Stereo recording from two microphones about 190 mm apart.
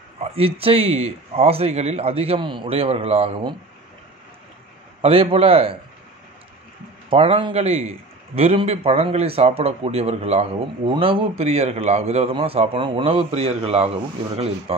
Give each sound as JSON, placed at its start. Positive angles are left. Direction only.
{"t": 0.2, "sound": "speech", "side_deg": -30}
{"t": 5.0, "sound": "a man's voice", "side_deg": -30}
{"t": 7.1, "sound": "speech", "side_deg": -30}